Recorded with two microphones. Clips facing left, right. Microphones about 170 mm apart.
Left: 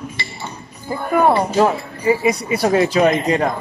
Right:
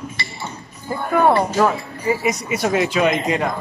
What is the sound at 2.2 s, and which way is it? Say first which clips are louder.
Speech: left 3 dB; 35° left (ahead or behind).